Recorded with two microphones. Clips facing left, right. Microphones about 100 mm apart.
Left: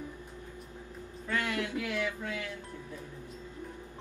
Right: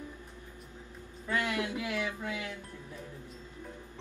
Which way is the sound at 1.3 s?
20° right (ahead or behind).